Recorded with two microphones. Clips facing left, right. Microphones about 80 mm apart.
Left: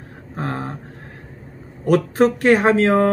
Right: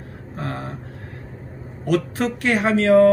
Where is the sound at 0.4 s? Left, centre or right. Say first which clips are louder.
Left 4 dB; left.